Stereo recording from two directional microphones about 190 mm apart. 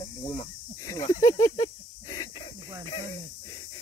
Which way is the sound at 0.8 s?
20° left (ahead or behind).